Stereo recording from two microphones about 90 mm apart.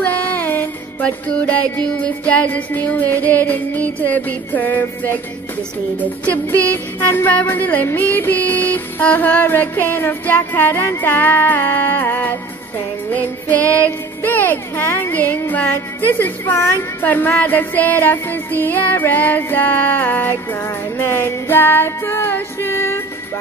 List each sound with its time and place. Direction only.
0.0 s music: 20° left (ahead or behind)
6.2 s music: 15° left (ahead or behind)